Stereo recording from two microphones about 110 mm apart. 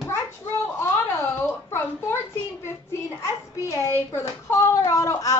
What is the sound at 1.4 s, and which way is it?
Speech, 25° left (ahead or behind).